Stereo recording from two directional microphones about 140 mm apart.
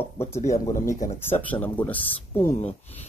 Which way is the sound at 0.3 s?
55° left (ahead or behind).